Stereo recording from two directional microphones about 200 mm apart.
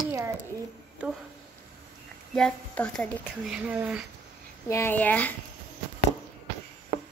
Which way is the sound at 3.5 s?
5° right (ahead or behind).